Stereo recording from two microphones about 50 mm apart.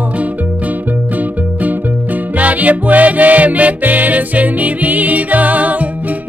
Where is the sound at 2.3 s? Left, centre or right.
Right.